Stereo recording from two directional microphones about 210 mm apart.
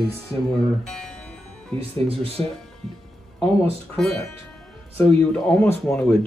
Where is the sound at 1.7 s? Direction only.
25° right (ahead or behind).